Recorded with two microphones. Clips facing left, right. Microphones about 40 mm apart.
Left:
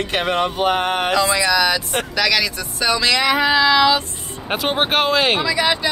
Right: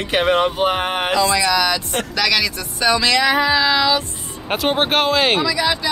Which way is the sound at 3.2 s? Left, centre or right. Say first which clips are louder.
Right 1 dB; left.